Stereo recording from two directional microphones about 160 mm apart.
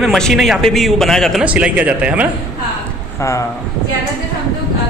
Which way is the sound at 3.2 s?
20° left (ahead or behind).